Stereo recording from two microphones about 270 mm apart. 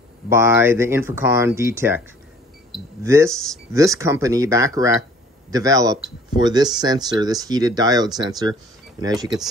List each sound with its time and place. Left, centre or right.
0.3 s speech: centre
3.0 s speech: centre
3.3 s speech: centre
3.7 s speech: centre